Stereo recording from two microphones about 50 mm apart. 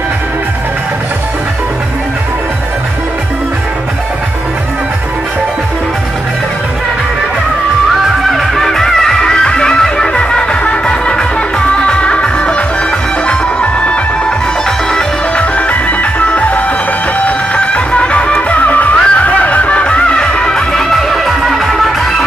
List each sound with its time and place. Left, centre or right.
8.3 s music: centre; by 13.9 s left
15.3 s music: left
18.6 s music: left; by 22.2 s centre